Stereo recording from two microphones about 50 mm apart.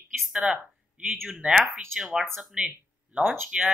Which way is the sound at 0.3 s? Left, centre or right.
Centre.